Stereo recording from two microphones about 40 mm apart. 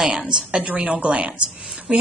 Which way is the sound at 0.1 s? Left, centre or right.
Centre.